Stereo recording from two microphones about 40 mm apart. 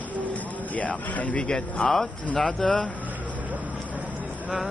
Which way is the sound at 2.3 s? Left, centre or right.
Centre.